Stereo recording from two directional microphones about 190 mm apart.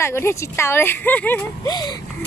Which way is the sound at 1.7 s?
20° left (ahead or behind).